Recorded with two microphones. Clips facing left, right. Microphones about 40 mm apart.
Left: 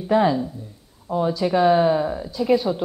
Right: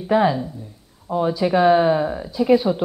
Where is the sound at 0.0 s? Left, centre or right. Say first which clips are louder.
Right 1 dB; centre.